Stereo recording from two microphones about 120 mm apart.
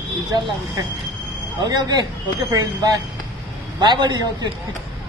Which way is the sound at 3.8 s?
40° right (ahead or behind).